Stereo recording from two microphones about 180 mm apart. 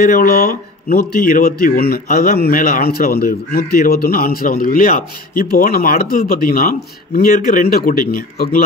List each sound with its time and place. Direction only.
0.0 s a man's voice: 50° left (ahead or behind)